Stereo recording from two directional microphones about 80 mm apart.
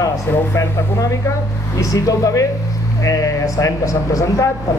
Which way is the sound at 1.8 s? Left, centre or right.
Left.